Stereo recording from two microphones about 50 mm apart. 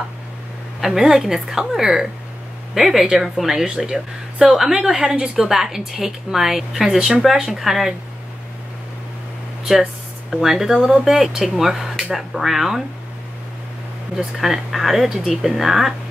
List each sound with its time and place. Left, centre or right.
0.7 s a woman's voice: centre
10.3 s speech: centre
14.1 s speech: centre